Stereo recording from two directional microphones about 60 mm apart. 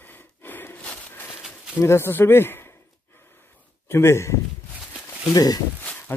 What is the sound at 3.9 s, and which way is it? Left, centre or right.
Speech, left.